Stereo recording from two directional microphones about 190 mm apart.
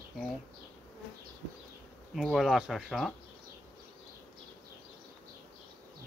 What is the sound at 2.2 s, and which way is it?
Speech, centre (ahead or behind).